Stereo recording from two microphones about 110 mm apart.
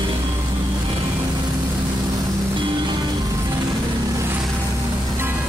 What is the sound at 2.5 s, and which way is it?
Music, 45° right (ahead or behind).